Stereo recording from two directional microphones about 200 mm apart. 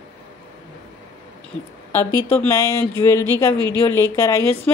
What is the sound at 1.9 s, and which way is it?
A woman's voice, 10° left (ahead or behind).